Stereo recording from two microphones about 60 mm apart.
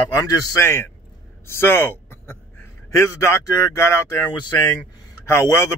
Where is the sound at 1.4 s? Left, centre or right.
Left.